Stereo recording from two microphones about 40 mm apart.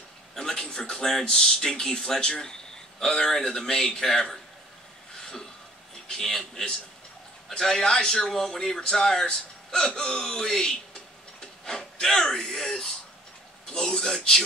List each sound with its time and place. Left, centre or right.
0.3 s a man's voice: centre
2.3 s a sound: centre
3.3 s speech: centre
6.1 s speech: centre